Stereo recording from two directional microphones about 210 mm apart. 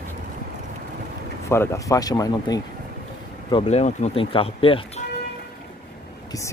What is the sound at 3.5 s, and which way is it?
Speech, 30° left (ahead or behind).